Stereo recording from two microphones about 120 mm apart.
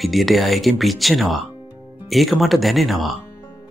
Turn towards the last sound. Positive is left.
turn(degrees=0)  # may be behind; listen again after turning